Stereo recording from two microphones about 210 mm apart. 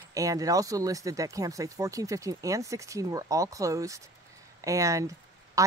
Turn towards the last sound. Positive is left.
turn(degrees=-15)  # may be behind; listen again after turning